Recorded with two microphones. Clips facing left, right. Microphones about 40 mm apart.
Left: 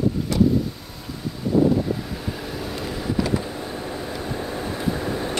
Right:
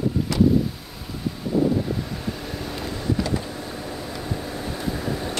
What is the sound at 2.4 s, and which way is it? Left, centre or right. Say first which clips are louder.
Vehicle: left 1 dB; centre.